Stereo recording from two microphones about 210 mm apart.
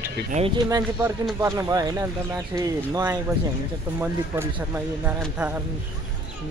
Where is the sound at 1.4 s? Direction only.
15° right (ahead or behind).